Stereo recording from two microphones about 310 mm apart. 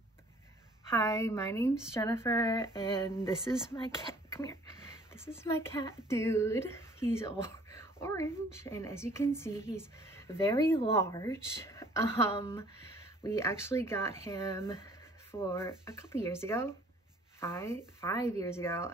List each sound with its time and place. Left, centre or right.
0.9 s a woman's voice: centre
3.7 s a woman's voice: centre